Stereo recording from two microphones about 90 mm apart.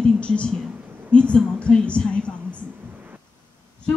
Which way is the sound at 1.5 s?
10° left (ahead or behind).